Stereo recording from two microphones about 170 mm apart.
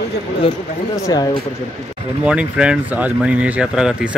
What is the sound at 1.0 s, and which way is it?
Speech, 25° left (ahead or behind).